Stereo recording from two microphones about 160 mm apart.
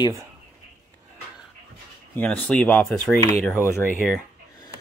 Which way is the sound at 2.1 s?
10° left (ahead or behind).